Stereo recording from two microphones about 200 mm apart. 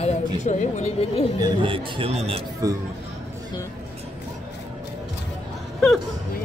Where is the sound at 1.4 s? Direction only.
25° right (ahead or behind).